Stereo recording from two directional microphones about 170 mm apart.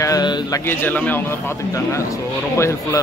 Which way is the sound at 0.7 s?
10° left (ahead or behind).